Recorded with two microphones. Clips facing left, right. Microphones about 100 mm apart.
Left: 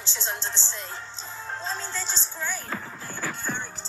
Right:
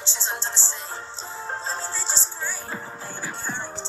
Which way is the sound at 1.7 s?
35° right (ahead or behind).